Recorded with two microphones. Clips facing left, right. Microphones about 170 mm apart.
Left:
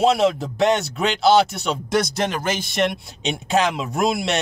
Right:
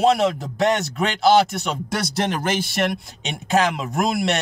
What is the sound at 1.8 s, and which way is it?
Speech, 20° left (ahead or behind).